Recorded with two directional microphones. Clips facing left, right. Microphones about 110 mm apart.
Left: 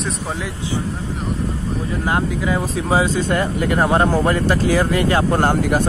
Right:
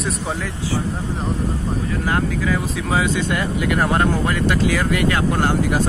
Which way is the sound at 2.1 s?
25° left (ahead or behind).